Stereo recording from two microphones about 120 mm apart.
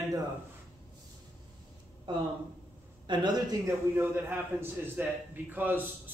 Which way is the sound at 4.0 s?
20° right (ahead or behind).